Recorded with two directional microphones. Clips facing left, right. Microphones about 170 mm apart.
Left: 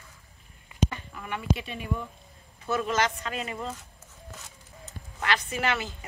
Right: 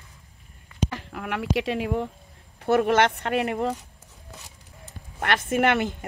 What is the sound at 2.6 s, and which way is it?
Speech, 65° right (ahead or behind).